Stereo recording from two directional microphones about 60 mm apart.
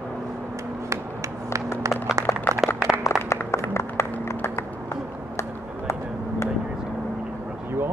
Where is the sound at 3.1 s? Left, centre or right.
Centre.